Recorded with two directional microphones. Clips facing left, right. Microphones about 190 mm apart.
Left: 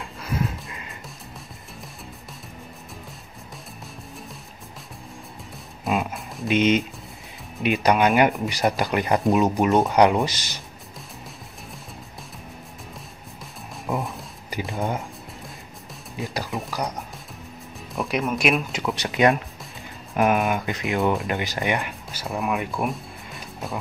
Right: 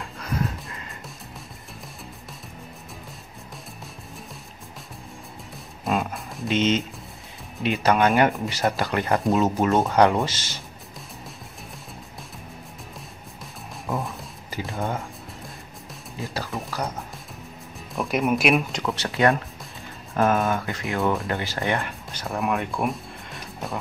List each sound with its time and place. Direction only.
0.0 s music: centre (ahead or behind)
5.9 s music: centre (ahead or behind)
6.5 s speech: 15° left (ahead or behind)
13.9 s music: 15° left (ahead or behind)
14.7 s speech: 15° left (ahead or behind)
16.5 s speech: centre (ahead or behind)
17.9 s speech: centre (ahead or behind)
18.9 s speech: 15° left (ahead or behind); by 23.8 s centre (ahead or behind)